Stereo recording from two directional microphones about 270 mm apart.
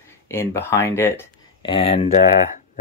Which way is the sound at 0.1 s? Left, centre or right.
Centre.